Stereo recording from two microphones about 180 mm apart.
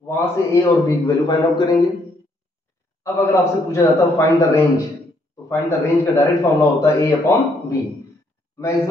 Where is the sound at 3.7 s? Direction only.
15° left (ahead or behind).